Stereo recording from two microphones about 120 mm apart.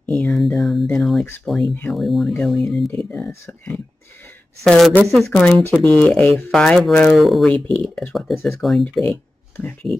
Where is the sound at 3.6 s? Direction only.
10° left (ahead or behind).